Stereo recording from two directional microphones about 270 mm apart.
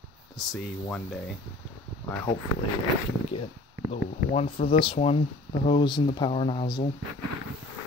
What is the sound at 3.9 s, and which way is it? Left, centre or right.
Speech, left.